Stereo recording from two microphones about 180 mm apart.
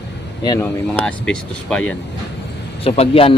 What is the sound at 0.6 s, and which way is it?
Speech, 10° left (ahead or behind).